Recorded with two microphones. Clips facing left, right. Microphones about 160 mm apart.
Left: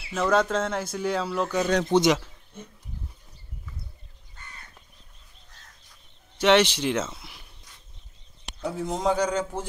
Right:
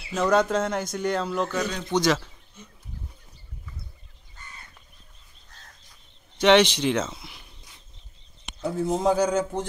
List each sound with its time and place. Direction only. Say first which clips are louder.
0.1 s speech: right 1 dB; centre (ahead or behind)
1.9 s a man's voice: left 1 dB; 25° left (ahead or behind)
2.6 s wild animals: left 6 dB; 55° left (ahead or behind)
6.3 s speech: right 2 dB; 5° left (ahead or behind)
7.2 s a sound: right 2 dB; centre (ahead or behind)
8.7 s speech: right 3 dB; 5° right (ahead or behind)